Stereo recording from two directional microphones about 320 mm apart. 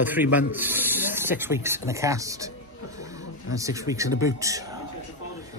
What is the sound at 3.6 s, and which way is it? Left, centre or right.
Speech, centre.